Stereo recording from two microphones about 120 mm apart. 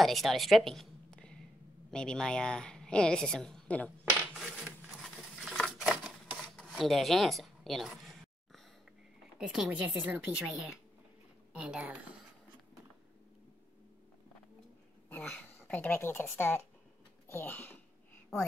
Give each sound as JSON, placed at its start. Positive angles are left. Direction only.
{"t": 0.0, "sound": "a woman's voice", "side_deg": 0}
{"t": 4.4, "sound": "a sound", "side_deg": -5}
{"t": 9.4, "sound": "a woman's voice", "side_deg": -5}
{"t": 11.5, "sound": "a woman's voice", "side_deg": -10}
{"t": 15.0, "sound": "a woman's voice", "side_deg": 10}